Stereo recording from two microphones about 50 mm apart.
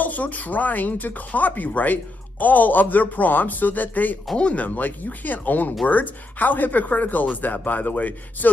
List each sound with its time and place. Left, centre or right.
0.0 s speech: left
4.4 s speech: left
4.6 s speech: left